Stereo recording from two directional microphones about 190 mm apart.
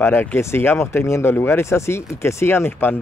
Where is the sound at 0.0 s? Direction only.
10° left (ahead or behind).